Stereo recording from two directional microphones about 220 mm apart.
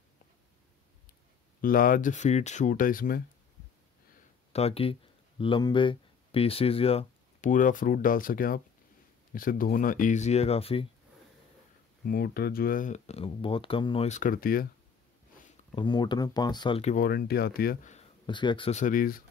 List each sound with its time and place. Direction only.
1.6 s speech: 40° left (ahead or behind)
4.5 s speech: 25° left (ahead or behind)
12.1 s speech: 45° left (ahead or behind)
15.7 s speech: 20° left (ahead or behind); by 17.9 s 45° left (ahead or behind)
17.9 s speech: 20° left (ahead or behind); by 19.2 s 40° left (ahead or behind)